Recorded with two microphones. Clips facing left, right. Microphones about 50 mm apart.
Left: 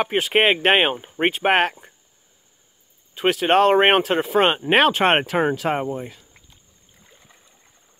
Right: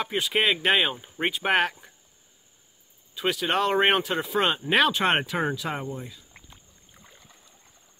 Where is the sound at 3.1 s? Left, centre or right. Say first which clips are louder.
Left 8 dB; left.